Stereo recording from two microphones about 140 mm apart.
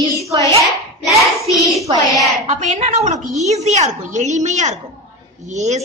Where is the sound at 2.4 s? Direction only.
55° right (ahead or behind).